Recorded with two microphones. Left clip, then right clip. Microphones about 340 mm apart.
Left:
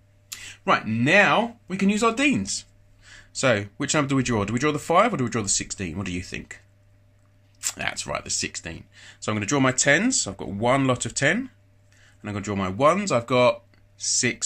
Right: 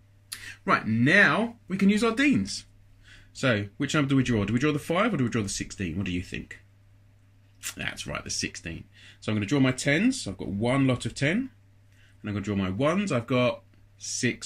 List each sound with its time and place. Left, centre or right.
0.3 s speech: centre
7.6 s speech: centre